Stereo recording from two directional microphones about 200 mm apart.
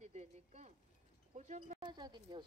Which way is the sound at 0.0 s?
35° right (ahead or behind).